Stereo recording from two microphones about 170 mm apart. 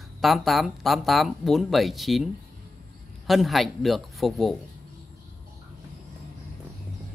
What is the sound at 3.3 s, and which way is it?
Speech, centre (ahead or behind).